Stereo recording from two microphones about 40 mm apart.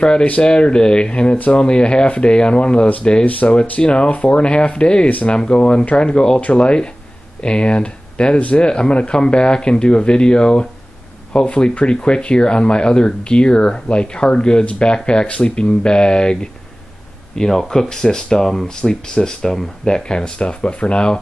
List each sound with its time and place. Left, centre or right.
0.0 s speech: left
3.3 s speech: left
3.8 s speech: left
5.4 s speech: left
8.4 s speech: left
8.6 s speech: left
11.4 s speech: left; by 18.7 s centre
18.8 s speech: left